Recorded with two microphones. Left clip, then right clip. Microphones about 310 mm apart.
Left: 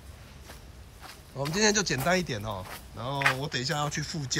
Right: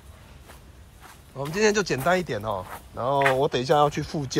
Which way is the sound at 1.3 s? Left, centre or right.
Centre.